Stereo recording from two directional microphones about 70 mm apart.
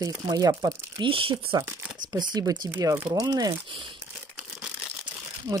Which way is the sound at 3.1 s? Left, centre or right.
Right.